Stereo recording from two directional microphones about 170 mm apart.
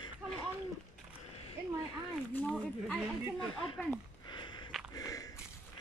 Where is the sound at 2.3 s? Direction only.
5° left (ahead or behind).